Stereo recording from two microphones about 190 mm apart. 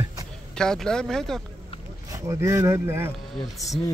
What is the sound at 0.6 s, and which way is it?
Speech, 5° left (ahead or behind).